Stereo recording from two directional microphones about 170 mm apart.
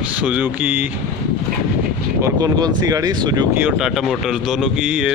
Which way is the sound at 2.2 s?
20° right (ahead or behind).